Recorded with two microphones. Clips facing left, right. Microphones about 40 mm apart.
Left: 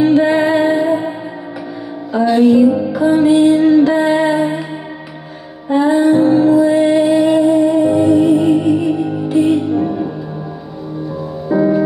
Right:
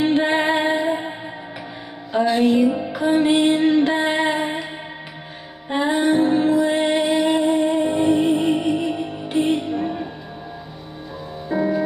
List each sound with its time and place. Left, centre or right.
0.0 s music: right
2.6 s music: right
2.9 s music: right
5.9 s music: right
9.7 s music: right
11.5 s music: centre